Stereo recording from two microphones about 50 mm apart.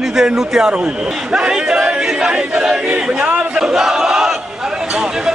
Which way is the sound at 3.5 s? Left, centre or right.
Centre.